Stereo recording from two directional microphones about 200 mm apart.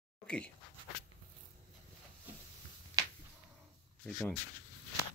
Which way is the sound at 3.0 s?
20° right (ahead or behind).